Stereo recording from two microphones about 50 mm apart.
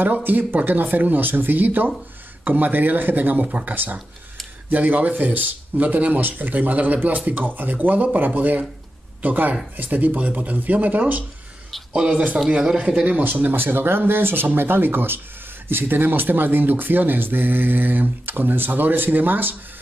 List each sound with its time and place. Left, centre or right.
0.0 s a man's voice: right
12.4 s speech: centre
13.0 s a man's voice: right
13.3 s speech: right